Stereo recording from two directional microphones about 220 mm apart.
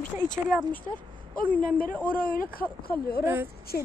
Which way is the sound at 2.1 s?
40° left (ahead or behind).